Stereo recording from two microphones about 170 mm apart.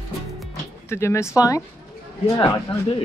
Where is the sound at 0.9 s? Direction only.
15° left (ahead or behind).